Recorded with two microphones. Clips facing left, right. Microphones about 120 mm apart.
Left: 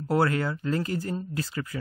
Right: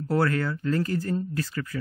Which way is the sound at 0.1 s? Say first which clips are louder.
Even; 20° left (ahead or behind).